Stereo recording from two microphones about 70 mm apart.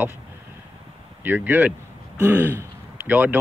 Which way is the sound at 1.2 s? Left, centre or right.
Right.